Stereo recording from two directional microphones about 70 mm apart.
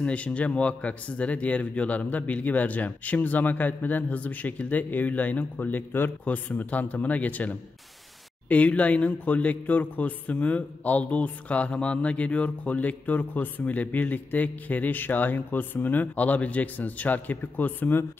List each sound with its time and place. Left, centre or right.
0.0 s a man's voice: centre